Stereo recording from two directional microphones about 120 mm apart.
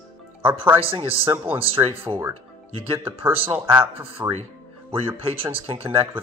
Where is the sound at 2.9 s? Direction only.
20° right (ahead or behind).